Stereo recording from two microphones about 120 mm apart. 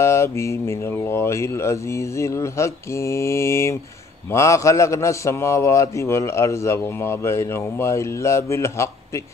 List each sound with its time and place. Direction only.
0.0 s a man's voice: 25° left (ahead or behind)